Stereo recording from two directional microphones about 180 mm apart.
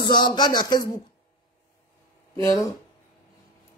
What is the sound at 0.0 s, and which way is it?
Speech, 25° left (ahead or behind).